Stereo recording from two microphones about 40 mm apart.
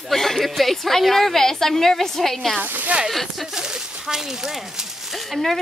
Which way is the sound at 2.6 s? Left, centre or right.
Right.